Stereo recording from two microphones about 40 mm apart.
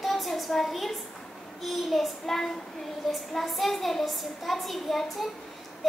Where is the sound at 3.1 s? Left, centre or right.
Centre.